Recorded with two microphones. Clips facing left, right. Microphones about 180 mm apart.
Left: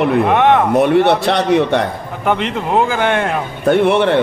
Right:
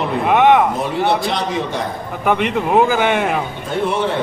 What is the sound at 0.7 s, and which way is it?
A man's voice, 65° left (ahead or behind).